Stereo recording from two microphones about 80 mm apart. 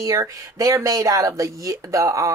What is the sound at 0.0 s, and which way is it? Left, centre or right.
Speech, right.